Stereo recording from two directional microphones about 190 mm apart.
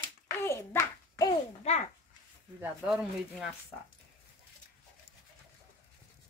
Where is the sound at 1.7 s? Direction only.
30° left (ahead or behind).